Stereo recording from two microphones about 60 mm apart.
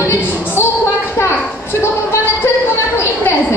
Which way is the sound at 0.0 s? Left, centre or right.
Left.